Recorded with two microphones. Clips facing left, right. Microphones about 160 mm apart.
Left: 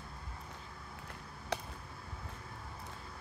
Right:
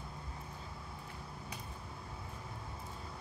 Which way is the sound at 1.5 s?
80° left.